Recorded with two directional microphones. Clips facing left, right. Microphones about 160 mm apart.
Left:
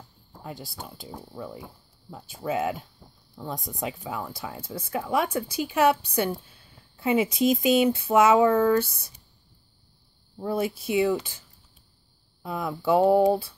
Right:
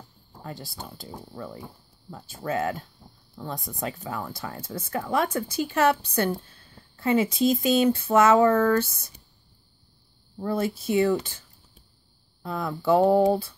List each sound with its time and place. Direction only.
0.4 s speech: 10° left (ahead or behind)
10.3 s speech: 10° left (ahead or behind)
12.4 s speech: 10° left (ahead or behind)